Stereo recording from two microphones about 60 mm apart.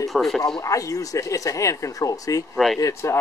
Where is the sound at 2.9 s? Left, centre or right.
Left.